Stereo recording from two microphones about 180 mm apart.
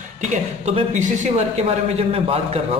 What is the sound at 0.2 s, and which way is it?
A man's voice, 40° right (ahead or behind).